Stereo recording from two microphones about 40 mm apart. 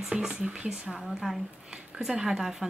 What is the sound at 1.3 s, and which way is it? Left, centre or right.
Speech, centre.